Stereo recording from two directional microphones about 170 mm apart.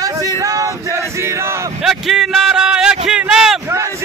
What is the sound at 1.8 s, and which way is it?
Speech, centre (ahead or behind).